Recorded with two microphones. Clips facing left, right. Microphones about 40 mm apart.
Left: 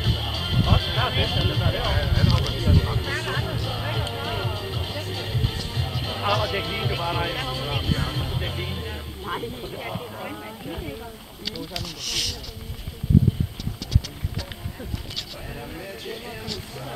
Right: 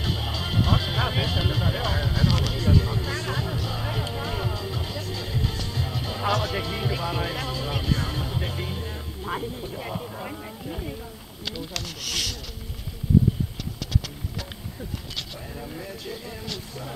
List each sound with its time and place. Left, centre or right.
0.0 s speech: left
2.7 s speech: left
3.6 s music: left
6.5 s speech: left; by 11.0 s centre
12.0 s speech: centre
15.6 s speech: left